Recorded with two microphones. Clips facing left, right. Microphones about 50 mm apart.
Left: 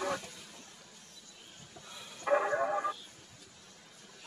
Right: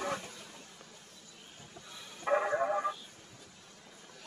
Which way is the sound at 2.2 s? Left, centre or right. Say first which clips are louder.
Left 1 dB; centre.